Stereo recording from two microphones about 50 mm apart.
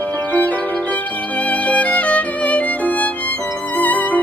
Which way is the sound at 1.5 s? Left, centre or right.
Left.